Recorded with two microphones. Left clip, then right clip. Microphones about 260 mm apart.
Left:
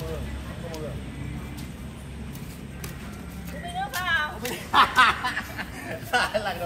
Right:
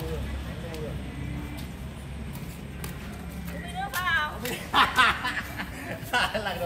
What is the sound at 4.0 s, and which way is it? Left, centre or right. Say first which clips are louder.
Music: even; centre.